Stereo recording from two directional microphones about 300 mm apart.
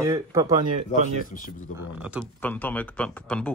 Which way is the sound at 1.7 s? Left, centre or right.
Centre.